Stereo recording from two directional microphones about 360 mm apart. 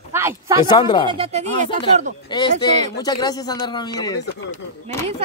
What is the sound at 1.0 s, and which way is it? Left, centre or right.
Speech, centre.